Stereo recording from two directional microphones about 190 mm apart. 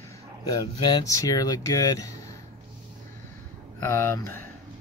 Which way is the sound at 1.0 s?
15° left (ahead or behind).